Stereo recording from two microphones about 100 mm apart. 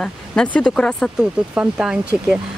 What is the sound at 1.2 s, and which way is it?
Speech, 10° right (ahead or behind).